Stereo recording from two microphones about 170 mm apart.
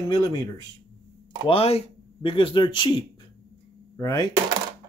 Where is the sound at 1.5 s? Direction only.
35° left (ahead or behind); by 4.2 s 20° left (ahead or behind).